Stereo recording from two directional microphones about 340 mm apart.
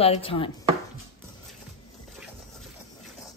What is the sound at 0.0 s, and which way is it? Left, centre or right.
Speech, centre.